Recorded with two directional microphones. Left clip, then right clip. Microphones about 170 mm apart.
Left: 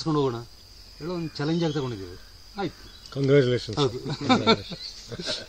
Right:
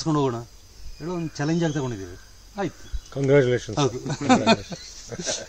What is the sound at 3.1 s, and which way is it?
Speech, 70° left (ahead or behind).